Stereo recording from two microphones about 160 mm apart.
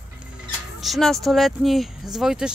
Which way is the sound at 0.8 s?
Centre (ahead or behind).